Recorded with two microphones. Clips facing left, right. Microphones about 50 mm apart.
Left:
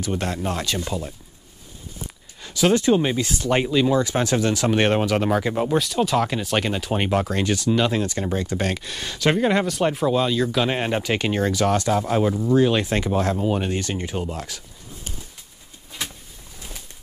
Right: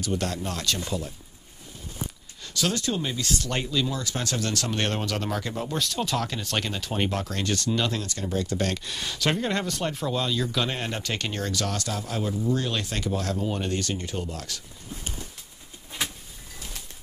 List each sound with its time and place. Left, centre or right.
0.0 s speech: left
2.4 s speech: centre
3.6 s speech: left; by 8.0 s centre
8.0 s speech: left
8.8 s speech: centre
10.7 s speech: left
12.5 s speech: left